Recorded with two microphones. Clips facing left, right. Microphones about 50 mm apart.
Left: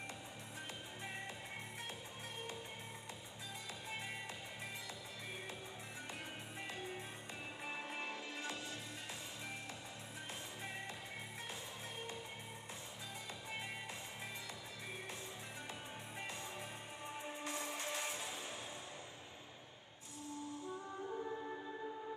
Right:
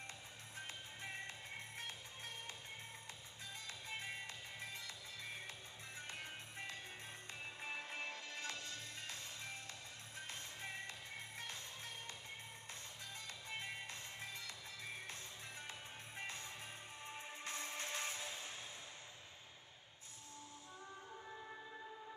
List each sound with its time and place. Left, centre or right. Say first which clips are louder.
7.6 s music: left 1 dB; left
17.0 s music: left 5 dB; centre
21.1 s music: left 11 dB; centre